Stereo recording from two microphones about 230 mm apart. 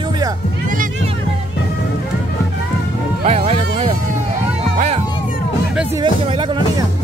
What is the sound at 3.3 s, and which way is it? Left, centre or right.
Speech, right.